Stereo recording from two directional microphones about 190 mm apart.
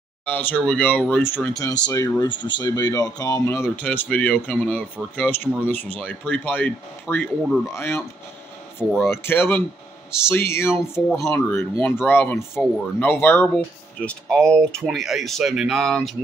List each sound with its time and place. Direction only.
0.2 s speech: 10° left (ahead or behind)
10.7 s speech: centre (ahead or behind)
11.2 s speech: 10° left (ahead or behind)